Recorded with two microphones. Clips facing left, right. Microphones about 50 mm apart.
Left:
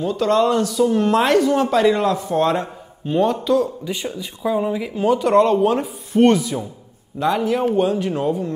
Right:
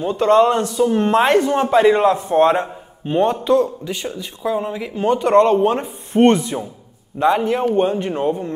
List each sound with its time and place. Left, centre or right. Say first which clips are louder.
0.0 s speech: right 4 dB; right
3.8 s speech: even; centre
5.4 s speech: right 1 dB; centre